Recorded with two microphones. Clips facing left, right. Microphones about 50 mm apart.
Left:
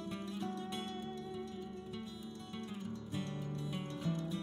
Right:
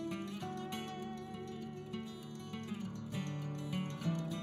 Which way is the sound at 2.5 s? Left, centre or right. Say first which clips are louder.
Right 1 dB; right.